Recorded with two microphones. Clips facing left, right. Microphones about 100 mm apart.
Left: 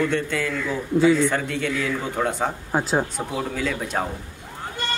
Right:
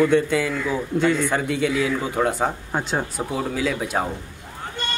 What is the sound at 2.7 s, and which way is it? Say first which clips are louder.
Speech: left 2 dB; 5° left (ahead or behind).